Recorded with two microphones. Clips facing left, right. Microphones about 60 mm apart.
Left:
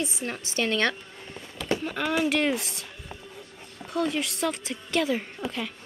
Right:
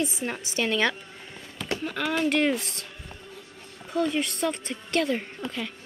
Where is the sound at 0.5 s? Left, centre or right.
Centre.